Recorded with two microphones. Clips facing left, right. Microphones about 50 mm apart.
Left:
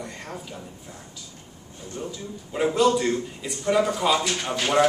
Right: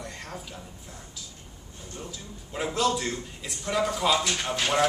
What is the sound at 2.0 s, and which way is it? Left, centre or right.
A man's voice, centre.